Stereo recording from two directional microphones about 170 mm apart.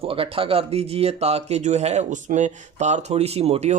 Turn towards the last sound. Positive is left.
turn(degrees=-40)  # may be behind; listen again after turning